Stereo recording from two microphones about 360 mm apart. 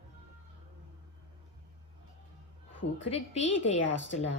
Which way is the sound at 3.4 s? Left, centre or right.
Left.